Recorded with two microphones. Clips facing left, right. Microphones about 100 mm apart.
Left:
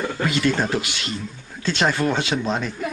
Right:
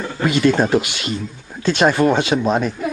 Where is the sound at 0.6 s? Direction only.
15° right (ahead or behind).